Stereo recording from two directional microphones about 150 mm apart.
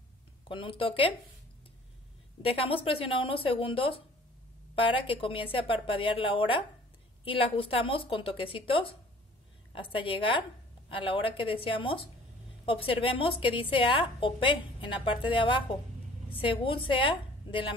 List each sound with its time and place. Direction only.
0.5 s a woman's voice: 35° left (ahead or behind)
2.4 s a woman's voice: 40° left (ahead or behind)